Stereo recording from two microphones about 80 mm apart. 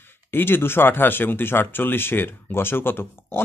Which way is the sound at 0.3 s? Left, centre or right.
Left.